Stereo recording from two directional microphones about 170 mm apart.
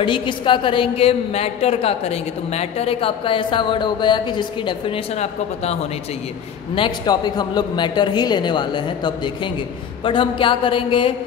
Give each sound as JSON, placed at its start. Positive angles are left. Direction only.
{"t": 0.0, "sound": "a woman's voice", "side_deg": 30}
{"t": 6.7, "sound": "a woman's voice", "side_deg": 25}